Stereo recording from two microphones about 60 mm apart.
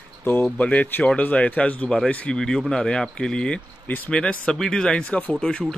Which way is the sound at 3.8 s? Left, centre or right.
Left.